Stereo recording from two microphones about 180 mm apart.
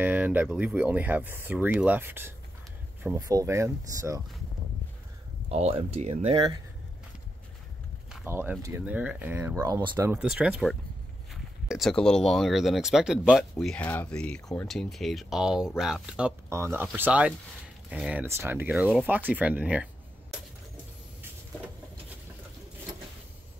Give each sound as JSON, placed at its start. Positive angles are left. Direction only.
{"t": 0.0, "sound": "speech", "side_deg": -10}
{"t": 5.5, "sound": "speech", "side_deg": -35}
{"t": 8.1, "sound": "speech", "side_deg": -10}
{"t": 10.1, "sound": "speech", "side_deg": -5}